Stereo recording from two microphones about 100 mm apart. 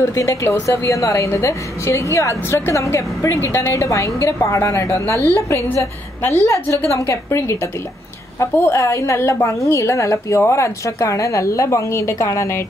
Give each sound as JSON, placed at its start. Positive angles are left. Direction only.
{"t": 0.0, "sound": "a woman's voice", "side_deg": 30}